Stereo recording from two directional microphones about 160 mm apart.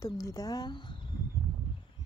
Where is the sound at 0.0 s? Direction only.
20° left (ahead or behind).